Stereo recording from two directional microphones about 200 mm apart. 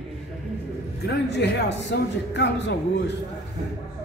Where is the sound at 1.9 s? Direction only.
60° left (ahead or behind).